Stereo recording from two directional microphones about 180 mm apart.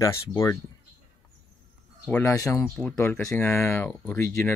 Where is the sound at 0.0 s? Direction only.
15° left (ahead or behind).